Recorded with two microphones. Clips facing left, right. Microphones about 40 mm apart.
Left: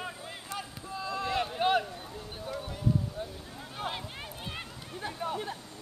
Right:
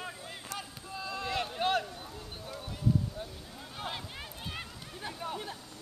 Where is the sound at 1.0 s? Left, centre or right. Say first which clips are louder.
Left 3 dB; centre.